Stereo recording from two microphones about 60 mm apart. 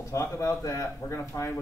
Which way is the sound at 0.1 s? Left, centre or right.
Left.